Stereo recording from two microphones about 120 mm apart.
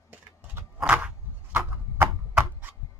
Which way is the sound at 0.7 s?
10° right (ahead or behind).